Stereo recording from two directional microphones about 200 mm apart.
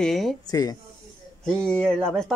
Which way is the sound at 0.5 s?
20° left (ahead or behind).